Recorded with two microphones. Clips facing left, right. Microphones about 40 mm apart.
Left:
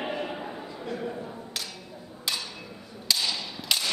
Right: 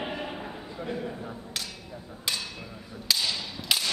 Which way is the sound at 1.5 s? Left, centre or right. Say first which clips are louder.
Even; centre.